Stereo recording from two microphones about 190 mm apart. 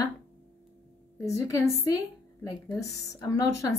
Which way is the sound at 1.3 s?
15° left (ahead or behind).